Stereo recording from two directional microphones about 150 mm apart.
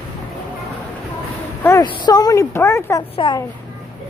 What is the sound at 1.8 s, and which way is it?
A woman's voice, 25° left (ahead or behind).